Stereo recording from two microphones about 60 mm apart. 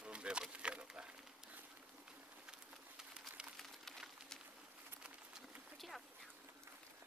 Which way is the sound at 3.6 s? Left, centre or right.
Centre.